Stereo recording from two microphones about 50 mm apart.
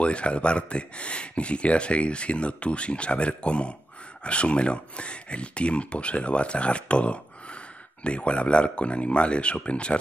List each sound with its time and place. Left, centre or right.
0.0 s speech: left